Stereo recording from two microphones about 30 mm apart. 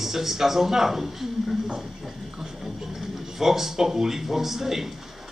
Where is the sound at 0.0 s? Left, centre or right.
Centre.